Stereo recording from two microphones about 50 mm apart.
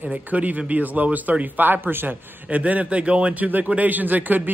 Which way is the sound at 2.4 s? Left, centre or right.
Right.